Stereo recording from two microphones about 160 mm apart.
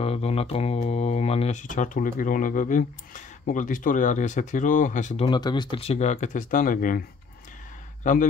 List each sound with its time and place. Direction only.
0.0 s speech: 40° left (ahead or behind)
5.2 s speech: 30° left (ahead or behind); by 7.0 s 55° left (ahead or behind)
8.0 s speech: 50° left (ahead or behind)